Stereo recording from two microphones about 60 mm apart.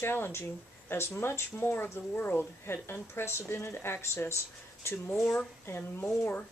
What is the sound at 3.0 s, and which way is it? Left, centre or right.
A woman's voice, left.